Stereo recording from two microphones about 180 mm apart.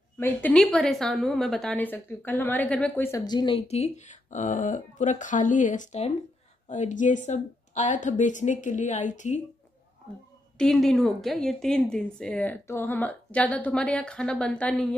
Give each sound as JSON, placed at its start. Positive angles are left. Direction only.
{"t": 0.2, "sound": "a woman's voice", "side_deg": 10}
{"t": 10.6, "sound": "speech", "side_deg": 0}